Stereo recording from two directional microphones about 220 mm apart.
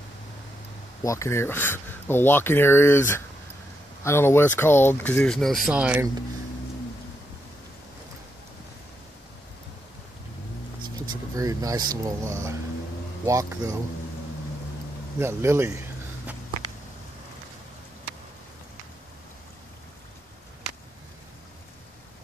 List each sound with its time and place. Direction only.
1.0 s speech: 15° left (ahead or behind); by 6.0 s 5° right (ahead or behind)
11.1 s speech: 15° right (ahead or behind)
15.1 s speech: 10° right (ahead or behind)